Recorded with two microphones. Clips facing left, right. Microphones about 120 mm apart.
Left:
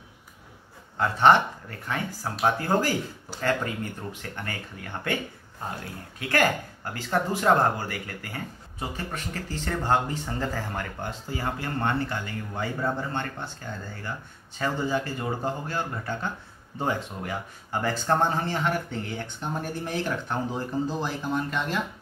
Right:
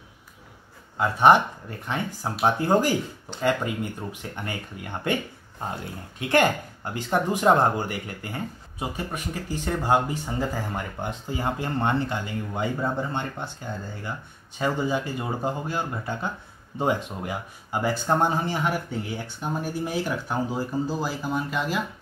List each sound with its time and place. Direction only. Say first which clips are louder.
0.9 s speech: right 2 dB; 10° right (ahead or behind)
6.1 s speech: right 3 dB; 20° right (ahead or behind); by 21.8 s 5° right (ahead or behind)